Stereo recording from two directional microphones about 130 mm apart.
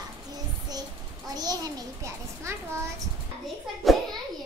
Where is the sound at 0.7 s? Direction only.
30° right (ahead or behind).